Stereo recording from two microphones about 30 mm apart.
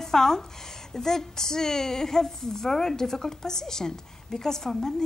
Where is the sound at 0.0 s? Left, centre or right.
Centre.